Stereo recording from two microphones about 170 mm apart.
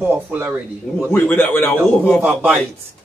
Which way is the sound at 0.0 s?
10° right (ahead or behind).